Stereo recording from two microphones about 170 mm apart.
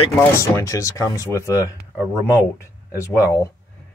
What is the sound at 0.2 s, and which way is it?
Speech, 15° left (ahead or behind).